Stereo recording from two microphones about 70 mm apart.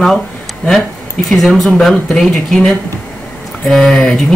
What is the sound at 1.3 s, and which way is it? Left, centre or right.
Speech, centre.